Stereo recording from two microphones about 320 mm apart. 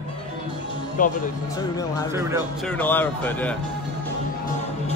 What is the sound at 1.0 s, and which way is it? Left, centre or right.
Speech, left.